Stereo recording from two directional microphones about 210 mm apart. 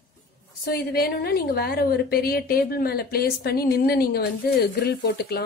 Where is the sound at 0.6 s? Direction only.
45° left (ahead or behind).